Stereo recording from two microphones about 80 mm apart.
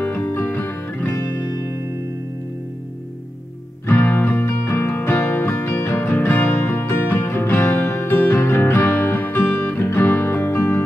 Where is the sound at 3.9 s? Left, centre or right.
Left.